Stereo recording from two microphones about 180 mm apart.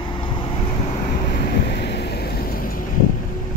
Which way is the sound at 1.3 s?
60° left (ahead or behind).